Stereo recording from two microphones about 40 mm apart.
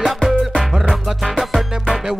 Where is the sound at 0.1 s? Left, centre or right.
Centre.